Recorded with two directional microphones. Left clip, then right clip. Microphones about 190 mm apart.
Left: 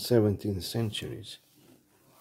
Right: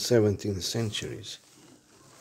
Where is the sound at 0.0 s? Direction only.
20° left (ahead or behind).